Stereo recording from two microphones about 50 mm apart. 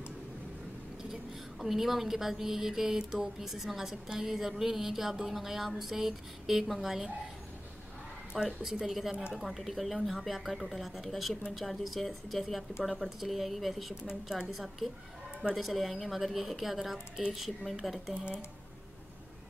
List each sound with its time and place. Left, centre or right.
1.6 s speech: centre
8.5 s a woman's voice: centre
14.0 s speech: centre
14.5 s a woman's voice: centre